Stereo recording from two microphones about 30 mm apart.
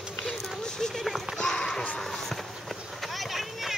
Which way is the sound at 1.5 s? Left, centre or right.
Left.